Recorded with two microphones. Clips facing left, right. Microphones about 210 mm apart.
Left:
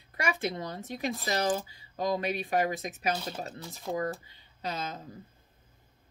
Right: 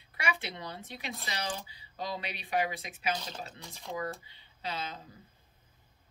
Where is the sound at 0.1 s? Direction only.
45° left (ahead or behind).